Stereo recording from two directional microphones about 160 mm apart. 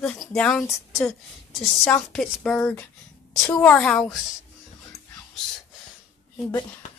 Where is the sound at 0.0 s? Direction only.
5° left (ahead or behind).